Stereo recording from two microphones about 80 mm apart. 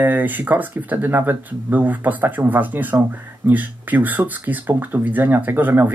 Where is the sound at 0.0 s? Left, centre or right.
Right.